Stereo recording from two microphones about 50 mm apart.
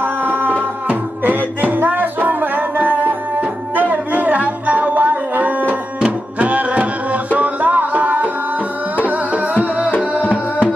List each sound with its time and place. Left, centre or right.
0.0 s music: right
5.9 s music: right